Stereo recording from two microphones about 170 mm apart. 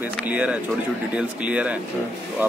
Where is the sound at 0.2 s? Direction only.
10° right (ahead or behind).